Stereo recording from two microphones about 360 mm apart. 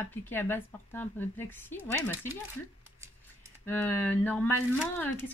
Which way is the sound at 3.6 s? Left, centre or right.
Centre.